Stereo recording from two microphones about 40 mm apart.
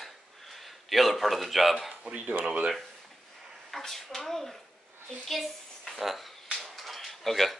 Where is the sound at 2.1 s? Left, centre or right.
Right.